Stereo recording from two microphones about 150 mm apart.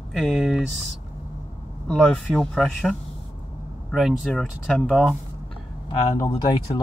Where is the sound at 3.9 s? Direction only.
Centre (ahead or behind).